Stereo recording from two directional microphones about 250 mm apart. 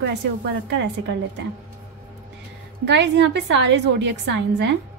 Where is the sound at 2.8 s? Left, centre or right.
Right.